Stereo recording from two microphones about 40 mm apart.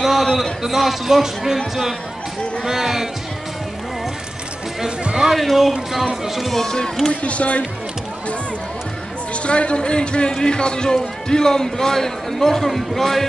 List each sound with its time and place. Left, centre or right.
0.0 s a sound: centre
0.4 s a man's voice: centre
2.6 s a man's voice: centre
4.8 s a man's voice: centre
5.3 s speech: centre
6.5 s a man's voice: centre
7.1 s speech: left
9.3 s a man's voice: left; by 13.3 s centre